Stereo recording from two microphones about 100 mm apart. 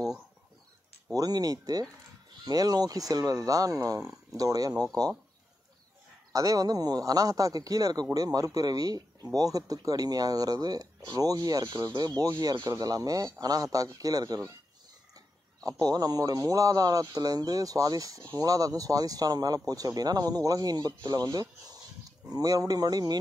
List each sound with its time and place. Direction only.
1.1 s speech: 40° right (ahead or behind)
6.3 s speech: 35° right (ahead or behind)